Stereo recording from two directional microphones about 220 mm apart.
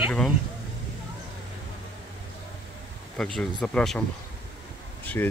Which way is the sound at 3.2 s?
5° left (ahead or behind).